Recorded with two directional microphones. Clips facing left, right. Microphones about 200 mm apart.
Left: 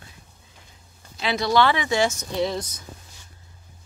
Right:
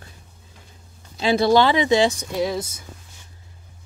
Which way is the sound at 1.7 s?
20° right (ahead or behind).